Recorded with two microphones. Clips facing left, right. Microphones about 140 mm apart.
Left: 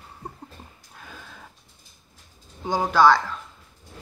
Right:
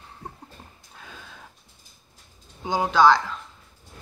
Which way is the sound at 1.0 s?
Centre (ahead or behind).